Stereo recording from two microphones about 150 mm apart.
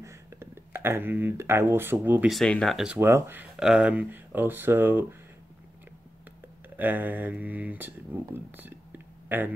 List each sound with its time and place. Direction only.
0.0 s a sound: 20° right (ahead or behind)
2.0 s speech: 10° right (ahead or behind)
2.3 s speech: 5° left (ahead or behind)
3.0 s speech: 15° right (ahead or behind)
3.5 s speech: 5° right (ahead or behind)
6.8 s speech: 10° right (ahead or behind)